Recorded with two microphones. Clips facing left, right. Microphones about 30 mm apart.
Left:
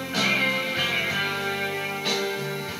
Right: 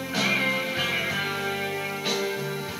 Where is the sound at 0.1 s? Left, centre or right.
Centre.